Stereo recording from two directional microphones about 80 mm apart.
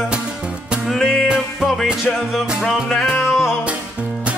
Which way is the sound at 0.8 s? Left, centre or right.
Centre.